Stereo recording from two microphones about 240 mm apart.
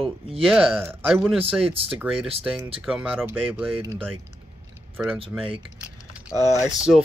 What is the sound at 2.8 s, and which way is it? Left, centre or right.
Speech, centre.